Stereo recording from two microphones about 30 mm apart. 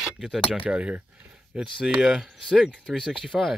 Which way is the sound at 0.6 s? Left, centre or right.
Right.